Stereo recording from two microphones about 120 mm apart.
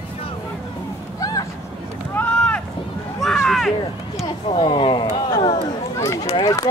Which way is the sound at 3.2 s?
Centre (ahead or behind).